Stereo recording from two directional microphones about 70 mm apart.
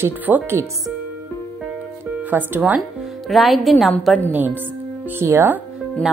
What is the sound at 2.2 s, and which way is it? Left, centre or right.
Speech, right.